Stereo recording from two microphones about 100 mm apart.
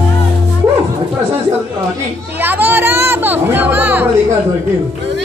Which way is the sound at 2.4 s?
20° right (ahead or behind).